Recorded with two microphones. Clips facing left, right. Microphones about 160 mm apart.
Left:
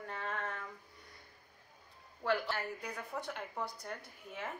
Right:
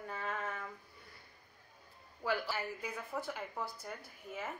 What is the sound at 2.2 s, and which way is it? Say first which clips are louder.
A woman's voice: left 2 dB; 5° right (ahead or behind).